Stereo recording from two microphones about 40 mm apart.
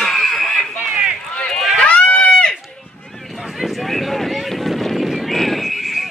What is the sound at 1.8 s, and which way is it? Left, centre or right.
Run, left.